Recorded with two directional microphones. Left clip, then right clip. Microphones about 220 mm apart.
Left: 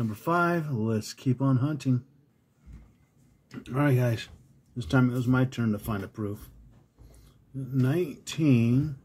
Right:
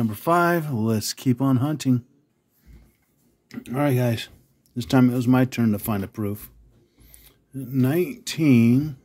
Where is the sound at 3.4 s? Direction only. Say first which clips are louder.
Right 4 dB; 35° right (ahead or behind).